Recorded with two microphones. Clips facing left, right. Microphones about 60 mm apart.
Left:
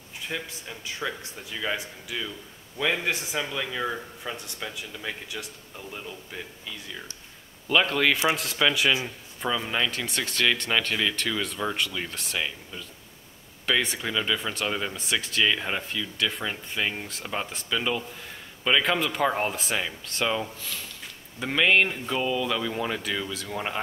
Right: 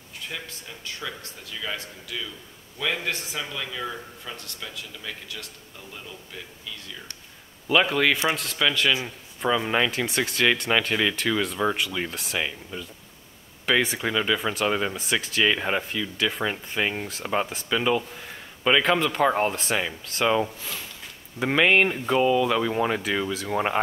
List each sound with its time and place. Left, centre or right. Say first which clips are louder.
0.3 s a man's voice: left 4 dB; centre
7.6 s speech: right 2 dB; centre
9.5 s speech: right 4 dB; centre
15.0 s speech: right 2 dB; centre
18.8 s speech: right 3 dB; centre
20.2 s speech: right 7 dB; centre